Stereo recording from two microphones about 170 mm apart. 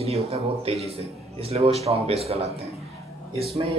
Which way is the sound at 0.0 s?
35° right (ahead or behind).